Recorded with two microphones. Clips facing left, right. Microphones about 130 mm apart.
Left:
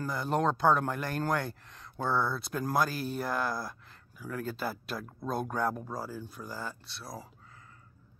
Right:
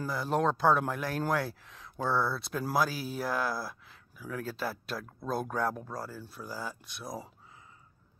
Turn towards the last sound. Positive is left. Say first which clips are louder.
# right 3 dB
turn(degrees=-20)  # may be behind; listen again after turning